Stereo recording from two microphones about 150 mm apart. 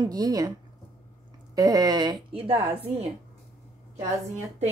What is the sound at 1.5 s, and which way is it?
Speech, 25° right (ahead or behind).